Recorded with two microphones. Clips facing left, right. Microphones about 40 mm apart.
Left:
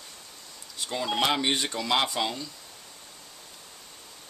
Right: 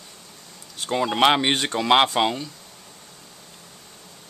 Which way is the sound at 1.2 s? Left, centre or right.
Right.